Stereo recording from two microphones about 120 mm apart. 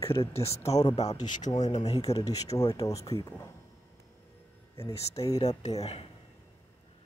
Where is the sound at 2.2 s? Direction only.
30° left (ahead or behind).